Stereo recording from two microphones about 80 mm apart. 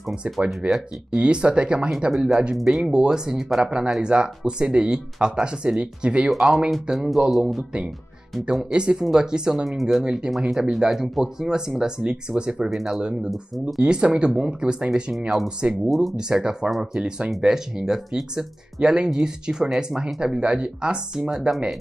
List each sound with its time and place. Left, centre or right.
0.1 s speech: centre
13.8 s speech: centre